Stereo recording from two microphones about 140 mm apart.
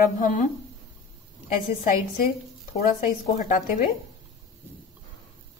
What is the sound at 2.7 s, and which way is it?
Speech, 60° left (ahead or behind).